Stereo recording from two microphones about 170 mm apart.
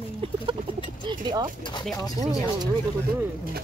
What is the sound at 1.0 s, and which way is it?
Speech, 25° right (ahead or behind).